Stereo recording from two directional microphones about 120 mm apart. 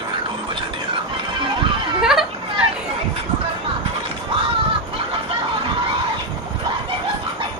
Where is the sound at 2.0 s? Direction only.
5° right (ahead or behind).